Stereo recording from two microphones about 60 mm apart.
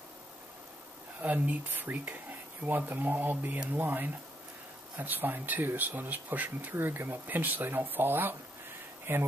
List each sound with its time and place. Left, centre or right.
1.2 s speech: right